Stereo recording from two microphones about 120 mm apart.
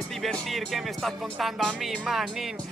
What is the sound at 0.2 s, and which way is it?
Speech, centre (ahead or behind).